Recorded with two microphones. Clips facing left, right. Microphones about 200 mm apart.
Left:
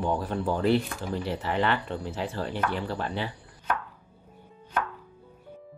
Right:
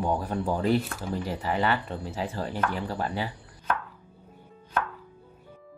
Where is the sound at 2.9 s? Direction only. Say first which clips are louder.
Right 1 dB; 40° right (ahead or behind).